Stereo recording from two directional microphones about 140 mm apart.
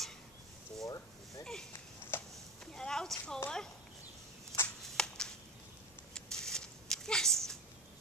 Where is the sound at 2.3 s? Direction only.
5° left (ahead or behind).